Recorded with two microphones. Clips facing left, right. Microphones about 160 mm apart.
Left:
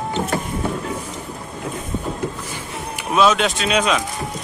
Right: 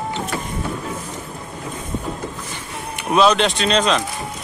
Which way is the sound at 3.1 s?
Centre (ahead or behind).